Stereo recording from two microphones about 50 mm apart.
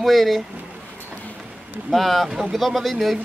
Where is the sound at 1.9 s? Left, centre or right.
Centre.